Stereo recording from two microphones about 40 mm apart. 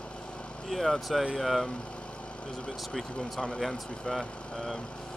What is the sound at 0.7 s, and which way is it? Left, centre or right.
Speech, centre.